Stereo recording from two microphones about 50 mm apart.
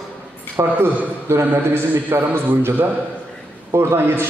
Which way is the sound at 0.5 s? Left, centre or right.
Right.